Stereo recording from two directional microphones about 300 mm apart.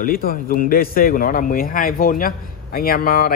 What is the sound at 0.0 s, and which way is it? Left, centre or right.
A man's voice, left.